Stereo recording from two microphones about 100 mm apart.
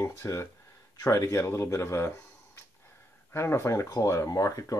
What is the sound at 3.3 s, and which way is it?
Speech, 25° left (ahead or behind).